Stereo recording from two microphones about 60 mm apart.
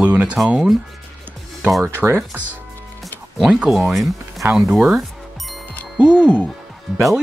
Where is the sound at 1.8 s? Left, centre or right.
Right.